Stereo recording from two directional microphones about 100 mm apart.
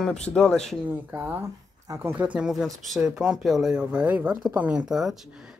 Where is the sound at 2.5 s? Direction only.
Centre (ahead or behind).